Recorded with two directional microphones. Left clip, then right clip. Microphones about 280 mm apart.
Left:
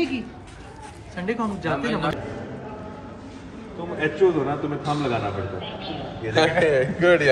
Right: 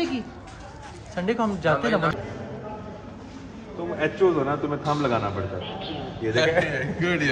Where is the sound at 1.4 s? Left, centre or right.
Right.